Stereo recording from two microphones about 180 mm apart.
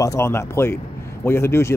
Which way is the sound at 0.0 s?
15° left (ahead or behind).